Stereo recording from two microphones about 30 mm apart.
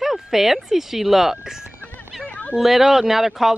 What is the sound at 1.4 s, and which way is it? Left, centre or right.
Speech, centre.